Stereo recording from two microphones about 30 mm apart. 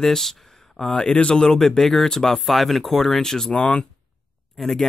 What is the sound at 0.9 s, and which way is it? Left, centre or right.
Speech, left.